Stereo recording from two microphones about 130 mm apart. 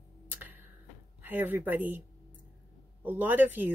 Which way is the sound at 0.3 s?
15° right (ahead or behind).